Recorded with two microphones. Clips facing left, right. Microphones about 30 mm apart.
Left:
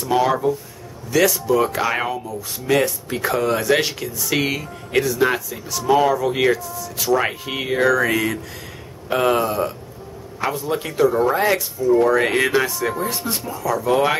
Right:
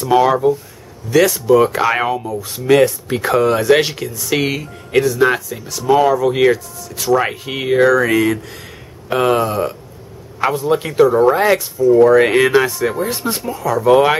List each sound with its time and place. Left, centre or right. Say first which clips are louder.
0.0 s speech: right 5 dB; centre
4.1 s speech: right 3 dB; centre; by 14.1 s right